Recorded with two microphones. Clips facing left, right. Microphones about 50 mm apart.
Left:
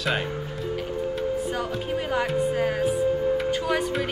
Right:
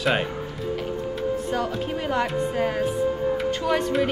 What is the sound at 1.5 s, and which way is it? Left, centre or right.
Speech, centre.